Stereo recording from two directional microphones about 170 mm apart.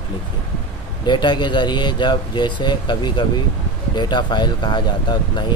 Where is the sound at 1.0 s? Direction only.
25° left (ahead or behind).